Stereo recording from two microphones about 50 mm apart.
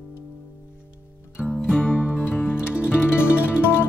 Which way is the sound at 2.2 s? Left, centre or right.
Left.